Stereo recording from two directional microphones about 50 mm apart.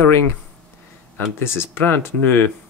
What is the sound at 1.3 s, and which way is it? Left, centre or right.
Speech, left.